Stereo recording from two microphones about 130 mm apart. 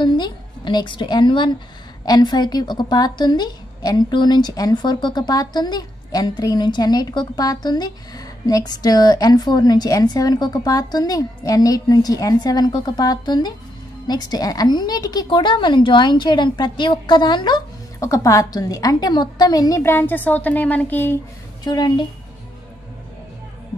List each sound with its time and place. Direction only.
0.0 s a woman's voice: 35° left (ahead or behind); by 21.2 s 15° left (ahead or behind)
21.6 s a woman's voice: 35° left (ahead or behind)